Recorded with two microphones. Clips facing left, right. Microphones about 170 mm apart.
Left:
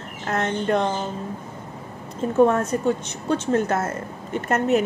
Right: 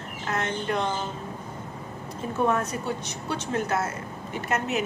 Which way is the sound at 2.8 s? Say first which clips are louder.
Left 8 dB; 50° left (ahead or behind).